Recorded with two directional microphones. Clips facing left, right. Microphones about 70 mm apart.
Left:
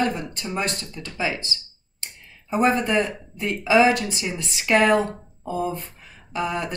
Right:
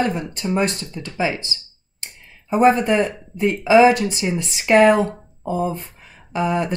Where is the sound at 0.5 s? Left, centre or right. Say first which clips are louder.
Right 6 dB; right.